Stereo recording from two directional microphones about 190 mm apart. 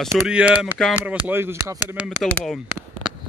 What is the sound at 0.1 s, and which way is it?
Speech, 5° right (ahead or behind).